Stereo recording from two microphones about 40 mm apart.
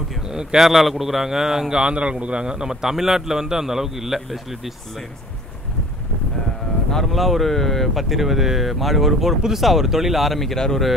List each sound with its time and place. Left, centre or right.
0.3 s speech: centre
0.7 s a man's voice: centre
1.8 s a man's voice: right; by 4.7 s centre
7.1 s speech: centre